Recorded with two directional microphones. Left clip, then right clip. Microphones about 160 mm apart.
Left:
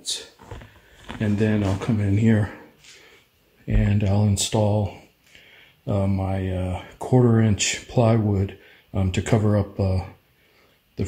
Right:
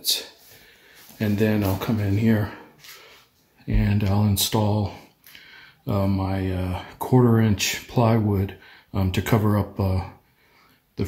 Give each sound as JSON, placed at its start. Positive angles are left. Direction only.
{"t": 1.2, "sound": "speech", "side_deg": 5}
{"t": 3.6, "sound": "speech", "side_deg": 20}